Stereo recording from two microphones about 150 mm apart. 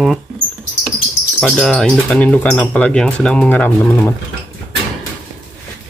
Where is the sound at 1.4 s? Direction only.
Centre (ahead or behind).